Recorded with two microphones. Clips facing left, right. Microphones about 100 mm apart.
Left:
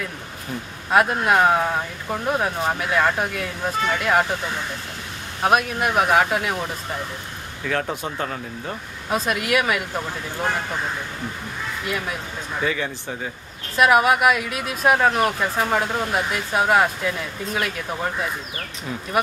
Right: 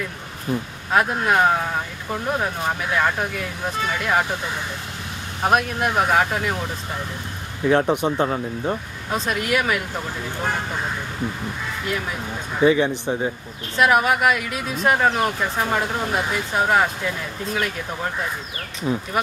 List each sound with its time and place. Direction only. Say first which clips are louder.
0.9 s speech: left 1 dB; centre (ahead or behind)
5.4 s speech: even; centre (ahead or behind)
7.6 s speech: right 7 dB; 20° right (ahead or behind)
9.1 s speech: left 1 dB; 5° left (ahead or behind)
12.5 s speech: right 8 dB; 20° right (ahead or behind)
13.7 s speech: left 1 dB; 5° left (ahead or behind)
18.9 s speech: right 8 dB; 25° right (ahead or behind)